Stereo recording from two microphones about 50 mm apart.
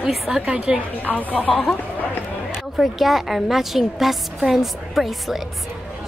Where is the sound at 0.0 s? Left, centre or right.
Centre.